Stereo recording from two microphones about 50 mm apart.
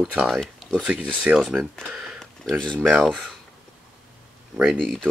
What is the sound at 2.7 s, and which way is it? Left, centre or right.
Speech, right.